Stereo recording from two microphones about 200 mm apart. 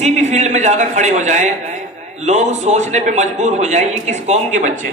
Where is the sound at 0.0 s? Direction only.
35° right (ahead or behind).